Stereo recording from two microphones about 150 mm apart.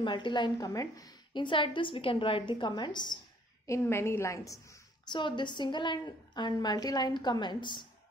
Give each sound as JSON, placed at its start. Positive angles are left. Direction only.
{"t": 0.0, "sound": "a woman's voice", "side_deg": 35}
{"t": 3.6, "sound": "a woman's voice", "side_deg": 20}
{"t": 5.1, "sound": "a woman's voice", "side_deg": 30}